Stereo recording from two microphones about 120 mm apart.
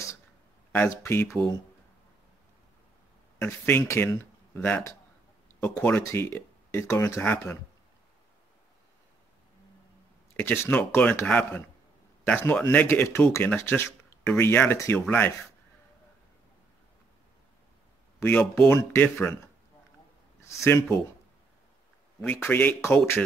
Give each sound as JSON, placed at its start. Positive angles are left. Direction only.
{"t": 0.7, "sound": "speech", "side_deg": 20}
{"t": 3.3, "sound": "speech", "side_deg": 20}
{"t": 10.3, "sound": "speech", "side_deg": 20}
{"t": 18.2, "sound": "speech", "side_deg": 20}
{"t": 20.4, "sound": "speech", "side_deg": 25}
{"t": 22.2, "sound": "speech", "side_deg": 15}